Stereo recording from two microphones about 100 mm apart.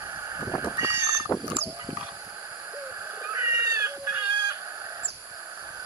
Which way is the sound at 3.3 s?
25° right (ahead or behind).